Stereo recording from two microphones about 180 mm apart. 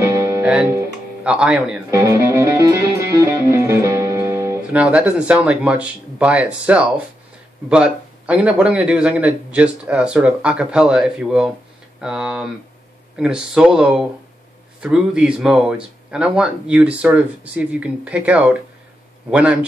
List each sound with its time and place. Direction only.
0.0 s music: 15° right (ahead or behind)
0.5 s speech: 10° right (ahead or behind)
2.0 s music: 15° right (ahead or behind)
4.8 s a man's voice: 5° right (ahead or behind)